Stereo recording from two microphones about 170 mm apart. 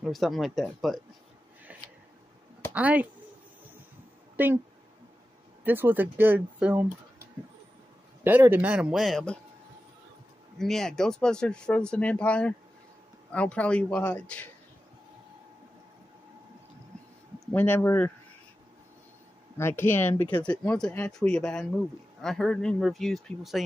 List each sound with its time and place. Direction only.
0.0 s speech: centre (ahead or behind)
1.7 s a sound: 10° right (ahead or behind)
2.7 s speech: 10° right (ahead or behind)
4.4 s speech: 10° right (ahead or behind)
5.6 s speech: 10° right (ahead or behind)
8.2 s speech: 10° right (ahead or behind)
10.6 s speech: 5° left (ahead or behind)
17.5 s speech: 10° left (ahead or behind)
19.5 s speech: 15° left (ahead or behind)